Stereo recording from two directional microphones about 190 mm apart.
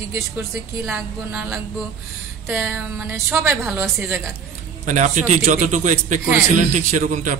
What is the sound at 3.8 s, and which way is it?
Speech, 5° right (ahead or behind).